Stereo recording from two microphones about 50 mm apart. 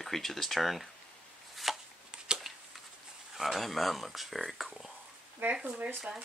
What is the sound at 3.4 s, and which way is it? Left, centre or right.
Speech, centre.